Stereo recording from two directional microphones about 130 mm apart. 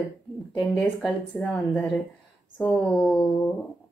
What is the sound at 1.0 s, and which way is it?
Speech, 10° left (ahead or behind).